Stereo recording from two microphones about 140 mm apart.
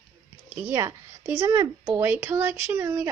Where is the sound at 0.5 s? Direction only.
15° right (ahead or behind).